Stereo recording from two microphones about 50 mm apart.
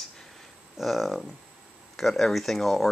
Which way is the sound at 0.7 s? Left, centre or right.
Centre.